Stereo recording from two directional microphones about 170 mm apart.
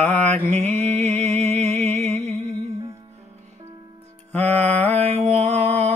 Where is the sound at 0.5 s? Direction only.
40° right (ahead or behind).